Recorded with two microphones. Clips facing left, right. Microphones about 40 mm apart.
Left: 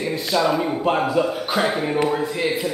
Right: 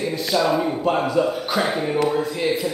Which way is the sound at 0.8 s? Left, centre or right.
Centre.